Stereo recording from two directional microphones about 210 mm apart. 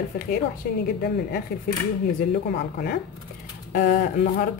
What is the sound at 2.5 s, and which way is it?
A woman's voice, 45° left (ahead or behind).